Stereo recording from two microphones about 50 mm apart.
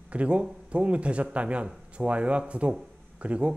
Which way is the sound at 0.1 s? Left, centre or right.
Right.